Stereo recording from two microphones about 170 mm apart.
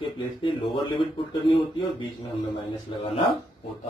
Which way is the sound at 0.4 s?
30° left (ahead or behind).